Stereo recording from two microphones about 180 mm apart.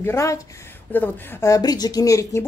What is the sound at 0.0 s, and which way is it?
Speech, 15° left (ahead or behind).